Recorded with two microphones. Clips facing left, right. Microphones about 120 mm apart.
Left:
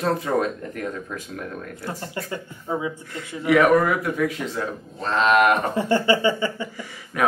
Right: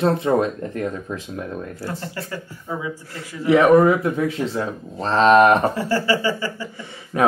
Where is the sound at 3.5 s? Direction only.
25° right (ahead or behind).